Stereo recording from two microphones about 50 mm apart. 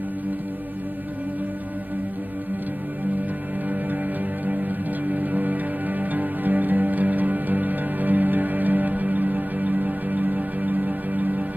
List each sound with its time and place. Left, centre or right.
4.5 s music: right